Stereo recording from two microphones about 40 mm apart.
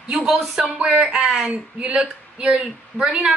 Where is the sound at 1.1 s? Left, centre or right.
Centre.